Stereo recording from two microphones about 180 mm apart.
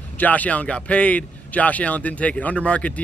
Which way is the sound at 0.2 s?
10° left (ahead or behind).